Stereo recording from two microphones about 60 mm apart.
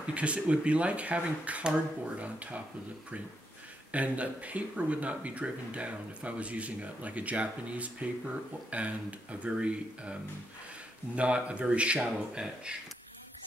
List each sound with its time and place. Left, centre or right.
0.0 s speech: right
3.9 s speech: right
11.1 s speech: right